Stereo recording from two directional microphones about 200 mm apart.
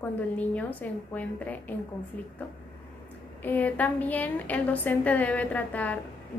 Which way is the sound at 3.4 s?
10° left (ahead or behind).